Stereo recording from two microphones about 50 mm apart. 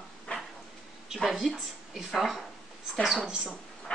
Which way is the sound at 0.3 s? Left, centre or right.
Left.